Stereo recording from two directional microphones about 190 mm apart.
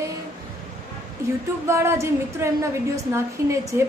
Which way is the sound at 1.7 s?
15° right (ahead or behind).